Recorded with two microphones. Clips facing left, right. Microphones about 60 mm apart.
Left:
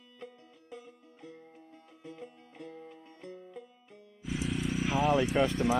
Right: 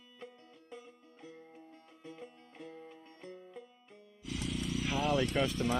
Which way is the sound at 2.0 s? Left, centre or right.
Centre.